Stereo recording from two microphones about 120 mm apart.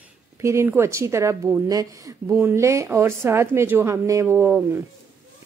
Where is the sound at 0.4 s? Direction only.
25° right (ahead or behind).